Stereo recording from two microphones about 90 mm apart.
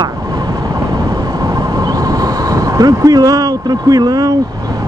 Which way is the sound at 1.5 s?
45° right (ahead or behind).